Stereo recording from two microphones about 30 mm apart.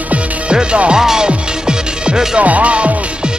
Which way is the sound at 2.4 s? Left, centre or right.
Right.